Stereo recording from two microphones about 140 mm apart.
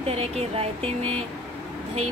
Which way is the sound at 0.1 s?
45° right (ahead or behind).